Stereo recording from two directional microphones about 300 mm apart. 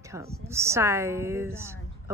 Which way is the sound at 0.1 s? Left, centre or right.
Centre.